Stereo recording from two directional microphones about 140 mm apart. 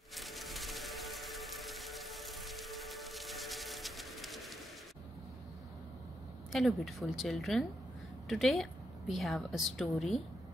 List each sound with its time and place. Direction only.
0.1 s music: centre (ahead or behind)
6.5 s a woman's voice: centre (ahead or behind)